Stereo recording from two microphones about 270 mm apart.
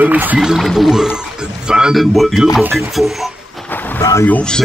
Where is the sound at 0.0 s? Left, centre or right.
Centre.